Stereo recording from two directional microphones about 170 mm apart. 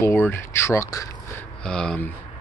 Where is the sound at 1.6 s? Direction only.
5° left (ahead or behind).